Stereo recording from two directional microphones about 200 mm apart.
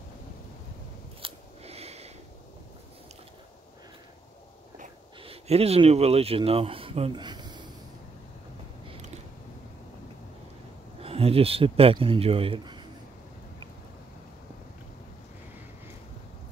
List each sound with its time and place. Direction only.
1.2 s scissors: 30° right (ahead or behind)
4.7 s speech: 30° right (ahead or behind)
11.0 s speech: 30° right (ahead or behind)